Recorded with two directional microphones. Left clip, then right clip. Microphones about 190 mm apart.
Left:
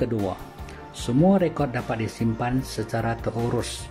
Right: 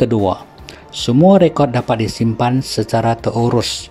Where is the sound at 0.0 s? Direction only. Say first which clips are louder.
Right 11 dB; 40° right (ahead or behind).